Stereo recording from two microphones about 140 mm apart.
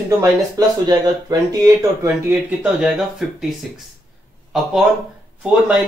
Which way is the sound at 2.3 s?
10° right (ahead or behind).